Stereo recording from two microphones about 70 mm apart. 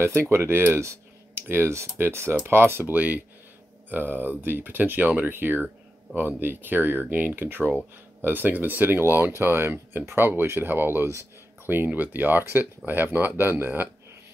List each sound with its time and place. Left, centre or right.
0.0 s speech: right